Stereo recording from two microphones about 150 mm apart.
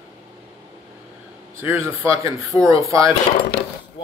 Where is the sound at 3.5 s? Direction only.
90° left.